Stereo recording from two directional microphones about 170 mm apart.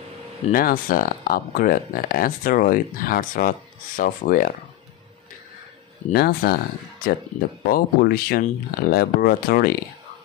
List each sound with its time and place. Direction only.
0.5 s speech: 55° left (ahead or behind)
6.1 s speech: 65° left (ahead or behind)